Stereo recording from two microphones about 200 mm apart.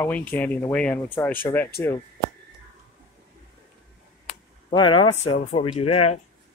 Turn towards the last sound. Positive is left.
turn(degrees=30)  # may be behind; listen again after turning